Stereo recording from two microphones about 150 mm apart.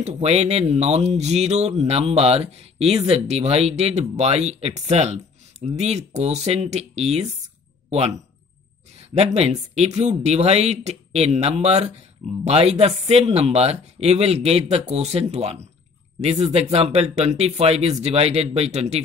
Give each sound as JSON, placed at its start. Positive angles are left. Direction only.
{"t": 0.0, "sound": "speech", "side_deg": -45}
{"t": 9.1, "sound": "speech", "side_deg": -45}